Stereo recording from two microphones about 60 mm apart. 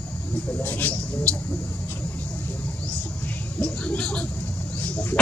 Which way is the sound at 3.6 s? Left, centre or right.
Left.